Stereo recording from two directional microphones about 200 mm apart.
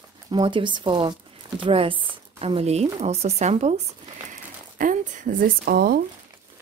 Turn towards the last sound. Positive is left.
turn(degrees=-50)  # may be behind; listen again after turning